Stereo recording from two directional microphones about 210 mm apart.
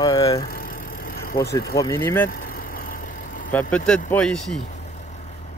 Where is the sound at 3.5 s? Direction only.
5° left (ahead or behind).